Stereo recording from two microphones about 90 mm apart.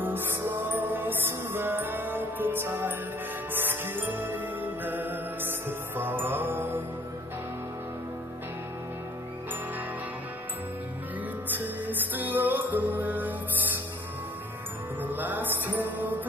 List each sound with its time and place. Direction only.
0.0 s music: 25° right (ahead or behind)
11.4 s music: 20° right (ahead or behind)
15.0 s music: 20° right (ahead or behind)